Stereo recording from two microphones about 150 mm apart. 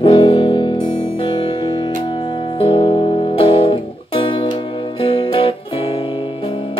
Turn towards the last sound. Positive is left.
turn(degrees=35)  # may be behind; listen again after turning